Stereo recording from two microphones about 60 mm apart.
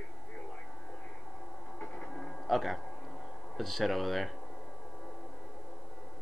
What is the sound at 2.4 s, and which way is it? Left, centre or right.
Speech, centre.